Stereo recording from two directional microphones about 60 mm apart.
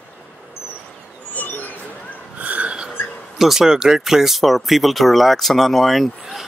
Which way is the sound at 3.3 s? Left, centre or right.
Centre.